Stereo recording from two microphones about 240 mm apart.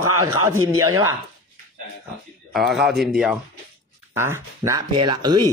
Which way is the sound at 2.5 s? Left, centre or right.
Centre.